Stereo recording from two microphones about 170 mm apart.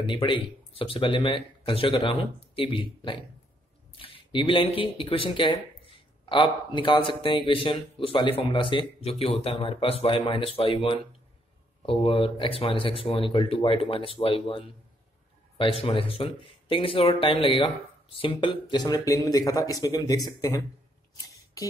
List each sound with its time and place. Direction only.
0.0 s speech: 30° left (ahead or behind)